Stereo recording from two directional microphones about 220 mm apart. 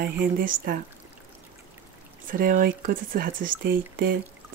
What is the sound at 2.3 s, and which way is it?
Speech, 40° right (ahead or behind).